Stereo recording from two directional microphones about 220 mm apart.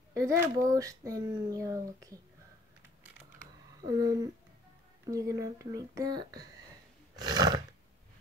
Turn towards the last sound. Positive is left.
turn(degrees=-15)  # may be behind; listen again after turning